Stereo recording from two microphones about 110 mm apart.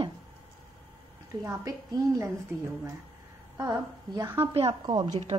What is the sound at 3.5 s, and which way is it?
Speech, 35° right (ahead or behind).